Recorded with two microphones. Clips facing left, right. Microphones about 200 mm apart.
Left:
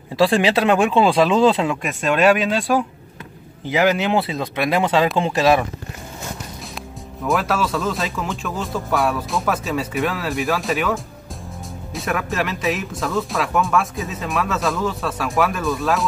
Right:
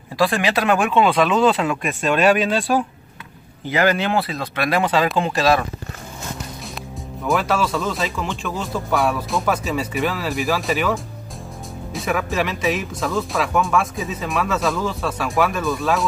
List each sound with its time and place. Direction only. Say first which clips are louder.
0.1 s speech: left 3 dB; 25° left (ahead or behind)
3.7 s speech: left 1 dB; 15° left (ahead or behind)
7.2 s speech: even; centre (ahead or behind)